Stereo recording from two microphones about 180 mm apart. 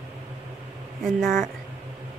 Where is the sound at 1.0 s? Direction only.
Centre (ahead or behind).